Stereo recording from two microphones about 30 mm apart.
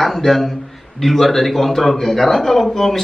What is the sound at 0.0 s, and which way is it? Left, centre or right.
A man's voice, centre.